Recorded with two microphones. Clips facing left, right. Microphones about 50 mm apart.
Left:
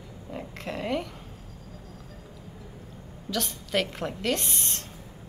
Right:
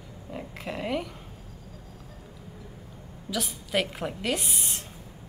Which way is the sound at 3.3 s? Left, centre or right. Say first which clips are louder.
Even; centre.